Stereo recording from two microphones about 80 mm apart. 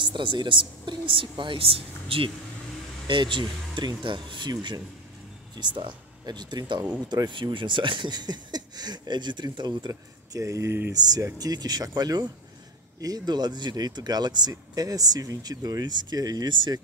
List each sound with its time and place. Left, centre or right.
0.0 s speech: right
3.1 s speech: right
10.4 s speech: right
11.3 s speech: right
16.4 s speech: right